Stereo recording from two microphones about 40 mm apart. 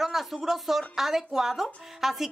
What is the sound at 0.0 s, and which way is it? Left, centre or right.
Speech, centre.